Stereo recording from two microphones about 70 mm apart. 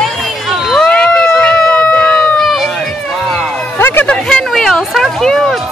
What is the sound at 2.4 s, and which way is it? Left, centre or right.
Run, centre.